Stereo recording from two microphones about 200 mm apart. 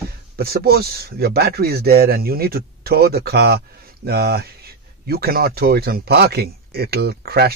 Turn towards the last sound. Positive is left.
turn(degrees=-50)  # may be behind; listen again after turning